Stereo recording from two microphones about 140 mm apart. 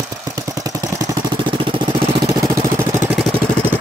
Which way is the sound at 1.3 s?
35° right (ahead or behind).